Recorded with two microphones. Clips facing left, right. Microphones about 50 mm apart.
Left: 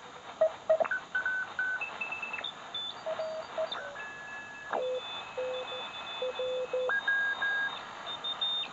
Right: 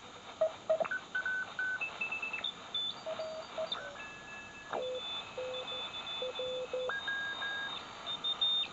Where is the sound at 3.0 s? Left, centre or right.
Centre.